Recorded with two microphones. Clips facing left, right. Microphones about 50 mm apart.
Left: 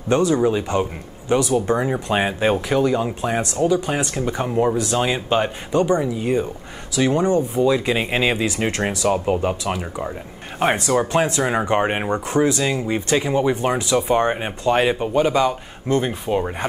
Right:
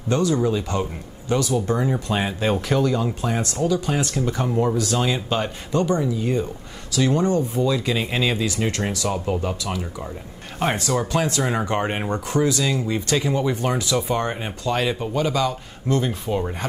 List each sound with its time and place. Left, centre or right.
0.1 s speech: left